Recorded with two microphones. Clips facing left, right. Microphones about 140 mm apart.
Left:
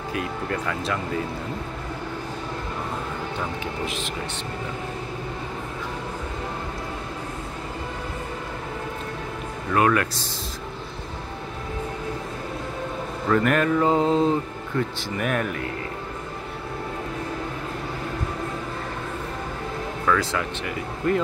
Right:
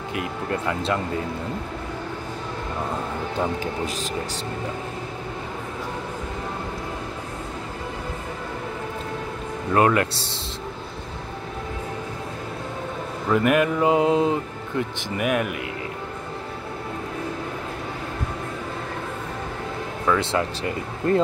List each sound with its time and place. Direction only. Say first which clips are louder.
0.1 s speech: right 1 dB; 20° right (ahead or behind)
3.8 s speech: right 1 dB; 40° right (ahead or behind)
9.8 s speech: right 2 dB; 25° right (ahead or behind)
13.3 s a sound: right 1 dB; 10° right (ahead or behind)
20.1 s speech: right 2 dB; 25° right (ahead or behind)